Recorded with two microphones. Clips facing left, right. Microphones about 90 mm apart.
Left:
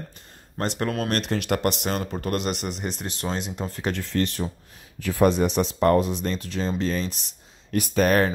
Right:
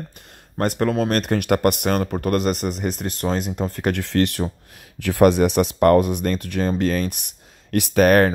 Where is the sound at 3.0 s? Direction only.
45° right (ahead or behind).